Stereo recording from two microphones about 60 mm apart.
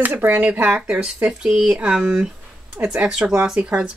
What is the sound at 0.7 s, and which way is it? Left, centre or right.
Speech, centre.